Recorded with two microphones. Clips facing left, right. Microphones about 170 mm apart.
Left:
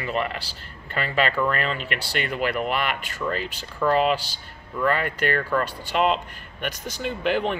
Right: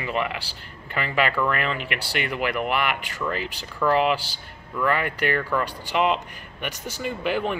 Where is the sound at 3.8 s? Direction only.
15° left (ahead or behind).